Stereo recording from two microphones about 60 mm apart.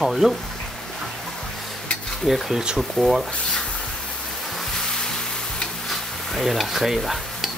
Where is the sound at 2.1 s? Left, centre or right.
Centre.